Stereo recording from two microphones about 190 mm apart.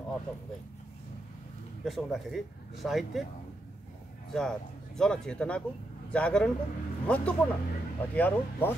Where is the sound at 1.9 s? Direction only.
Centre (ahead or behind).